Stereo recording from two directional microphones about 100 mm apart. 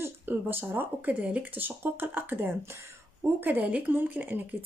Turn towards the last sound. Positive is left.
turn(degrees=-15)  # may be behind; listen again after turning